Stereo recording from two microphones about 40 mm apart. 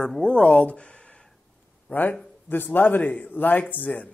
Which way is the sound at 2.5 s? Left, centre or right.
Left.